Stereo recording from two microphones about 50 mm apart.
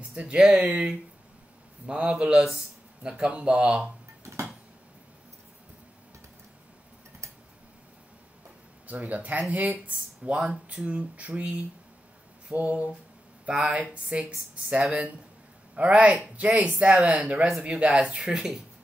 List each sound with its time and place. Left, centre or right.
0.1 s speech: right
0.4 s speech: centre
4.2 s a sound: right
8.8 s speech: right; by 10.9 s centre
10.9 s speech: right